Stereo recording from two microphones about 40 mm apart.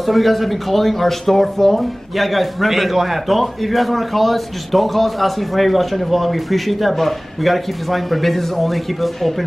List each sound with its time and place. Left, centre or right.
0.0 s speech: centre